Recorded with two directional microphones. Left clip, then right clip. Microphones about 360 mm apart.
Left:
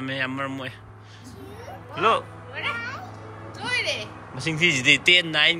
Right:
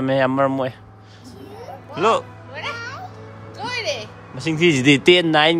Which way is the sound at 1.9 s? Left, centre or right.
Centre.